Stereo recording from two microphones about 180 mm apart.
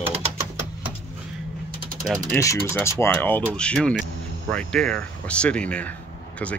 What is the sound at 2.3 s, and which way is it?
Speech, 15° left (ahead or behind).